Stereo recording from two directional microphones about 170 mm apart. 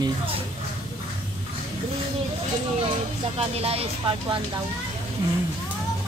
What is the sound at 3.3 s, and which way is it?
Speech, 35° right (ahead or behind).